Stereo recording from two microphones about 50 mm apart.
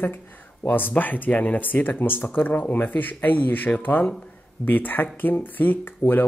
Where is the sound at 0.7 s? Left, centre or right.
Left.